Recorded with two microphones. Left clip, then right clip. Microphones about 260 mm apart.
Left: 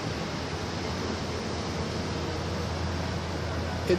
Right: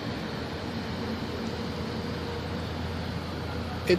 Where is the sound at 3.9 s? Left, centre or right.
Right.